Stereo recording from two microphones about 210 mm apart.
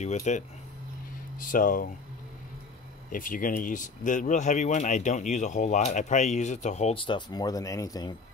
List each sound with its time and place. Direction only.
0.0 s speech: 35° left (ahead or behind)
1.4 s speech: 40° left (ahead or behind)
3.1 s speech: 40° left (ahead or behind); by 8.2 s 20° left (ahead or behind)